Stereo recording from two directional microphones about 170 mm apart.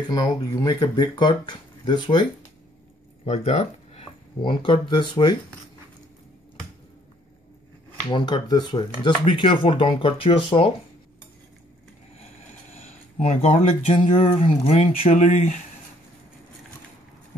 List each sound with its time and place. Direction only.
0.1 s speech: 25° left (ahead or behind)
3.3 s speech: 40° left (ahead or behind); by 5.4 s 25° left (ahead or behind)
8.1 s speech: 25° left (ahead or behind)
13.2 s speech: 35° left (ahead or behind)